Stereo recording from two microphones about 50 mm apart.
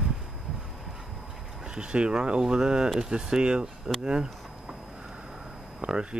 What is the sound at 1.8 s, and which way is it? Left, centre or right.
Speech, centre.